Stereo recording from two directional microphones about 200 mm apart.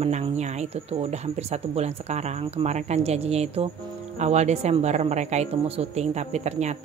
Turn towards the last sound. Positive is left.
turn(degrees=-35)  # may be behind; listen again after turning